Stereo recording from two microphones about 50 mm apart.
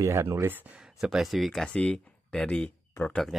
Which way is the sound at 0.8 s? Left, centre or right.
Centre.